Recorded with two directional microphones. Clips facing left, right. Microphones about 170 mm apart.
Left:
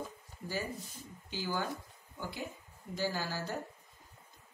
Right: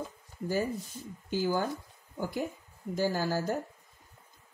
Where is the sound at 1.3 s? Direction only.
45° right (ahead or behind).